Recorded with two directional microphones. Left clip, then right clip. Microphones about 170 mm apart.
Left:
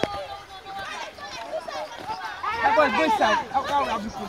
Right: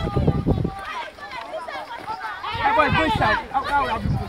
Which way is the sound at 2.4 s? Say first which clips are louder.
Right 1 dB; 15° left (ahead or behind).